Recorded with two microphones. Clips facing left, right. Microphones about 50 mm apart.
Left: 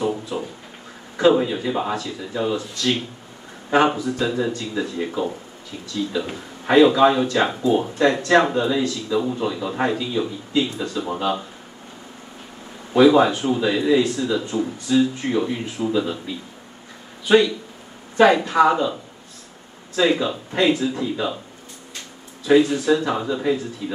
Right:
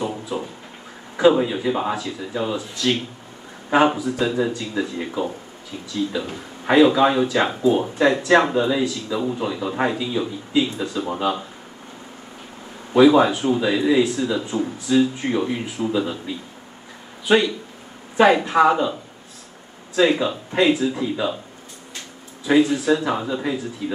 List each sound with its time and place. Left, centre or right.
1.1 s speech: centre
6.3 s speech: centre
12.9 s speech: centre
18.1 s speech: centre
20.0 s speech: centre
22.4 s speech: centre